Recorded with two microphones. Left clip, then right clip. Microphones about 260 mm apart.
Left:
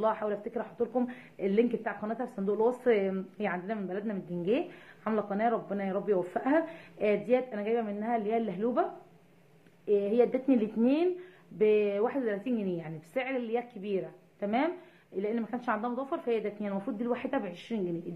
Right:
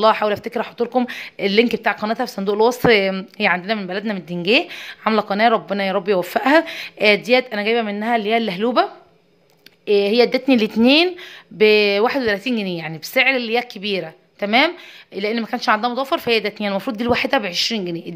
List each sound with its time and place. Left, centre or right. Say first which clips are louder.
0.0 s speech: right 14 dB; right
9.8 s speech: right 11 dB; right